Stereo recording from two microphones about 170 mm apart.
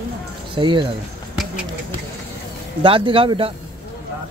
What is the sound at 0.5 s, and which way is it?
Speech, 30° right (ahead or behind).